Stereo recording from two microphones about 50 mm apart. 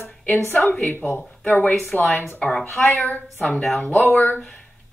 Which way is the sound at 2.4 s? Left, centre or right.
Left.